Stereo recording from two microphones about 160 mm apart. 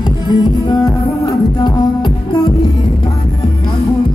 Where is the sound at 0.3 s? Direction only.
25° left (ahead or behind).